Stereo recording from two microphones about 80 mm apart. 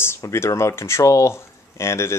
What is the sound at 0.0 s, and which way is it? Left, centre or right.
Speech, left.